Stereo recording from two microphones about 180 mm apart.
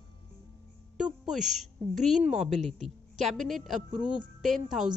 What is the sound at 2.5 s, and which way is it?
Speech, 40° right (ahead or behind).